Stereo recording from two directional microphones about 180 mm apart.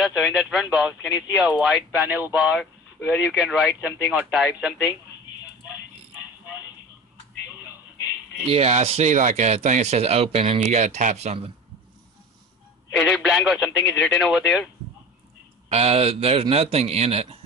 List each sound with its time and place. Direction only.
0.0 s speech: centre (ahead or behind)
8.5 s speech: 35° right (ahead or behind)
12.9 s speech: centre (ahead or behind)
15.7 s speech: 35° right (ahead or behind)